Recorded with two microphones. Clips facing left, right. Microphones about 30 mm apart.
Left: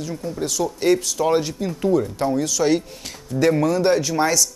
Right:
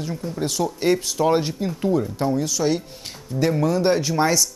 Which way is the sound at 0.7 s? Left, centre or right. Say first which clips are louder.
Left 3 dB; centre.